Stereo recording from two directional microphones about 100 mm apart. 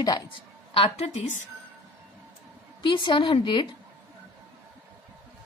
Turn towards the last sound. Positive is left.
turn(degrees=55)  # may be behind; listen again after turning